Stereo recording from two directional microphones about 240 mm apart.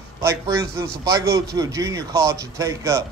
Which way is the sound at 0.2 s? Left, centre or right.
Centre.